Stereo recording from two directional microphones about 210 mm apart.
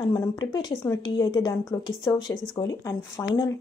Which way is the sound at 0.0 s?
15° left (ahead or behind).